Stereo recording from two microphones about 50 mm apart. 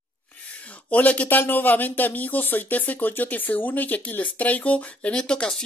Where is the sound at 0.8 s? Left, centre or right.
Left.